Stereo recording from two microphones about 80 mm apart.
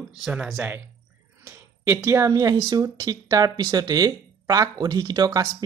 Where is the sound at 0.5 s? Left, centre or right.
Right.